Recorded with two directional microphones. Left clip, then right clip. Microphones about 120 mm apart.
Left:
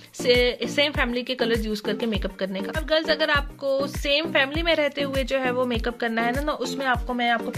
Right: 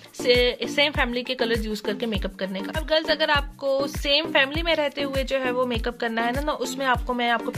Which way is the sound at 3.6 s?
15° right (ahead or behind).